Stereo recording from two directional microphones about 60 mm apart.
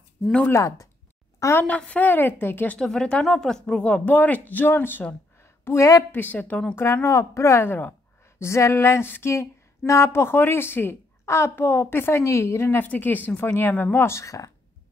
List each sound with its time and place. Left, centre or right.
0.5 s a woman's voice: left
1.8 s a woman's voice: left
2.8 s speech: centre; by 5.0 s left
5.4 s a sound: left
6.1 s speech: left
6.7 s a woman's voice: left
7.6 s a woman's voice: left
8.4 s a woman's voice: left
11.2 s a woman's voice: left
12.8 s a woman's voice: left
14.0 s speech: left